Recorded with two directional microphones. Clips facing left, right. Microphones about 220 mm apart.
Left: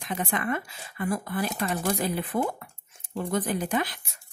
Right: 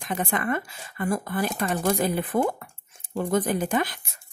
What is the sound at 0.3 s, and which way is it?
Speech, 50° right (ahead or behind).